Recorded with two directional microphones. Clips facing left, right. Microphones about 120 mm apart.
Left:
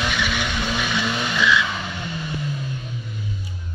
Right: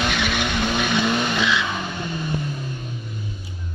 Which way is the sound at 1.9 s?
45° right (ahead or behind).